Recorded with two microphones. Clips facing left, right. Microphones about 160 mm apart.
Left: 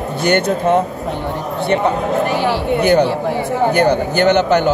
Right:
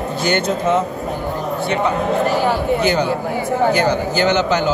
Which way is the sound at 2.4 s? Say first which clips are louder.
Left 2 dB; 60° left (ahead or behind).